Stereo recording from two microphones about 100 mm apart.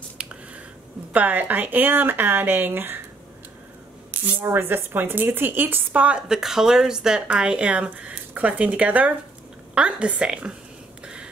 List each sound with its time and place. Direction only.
0.2 s a sound: 10° right (ahead or behind)
1.1 s speech: 15° right (ahead or behind)
4.1 s speech: 20° right (ahead or behind)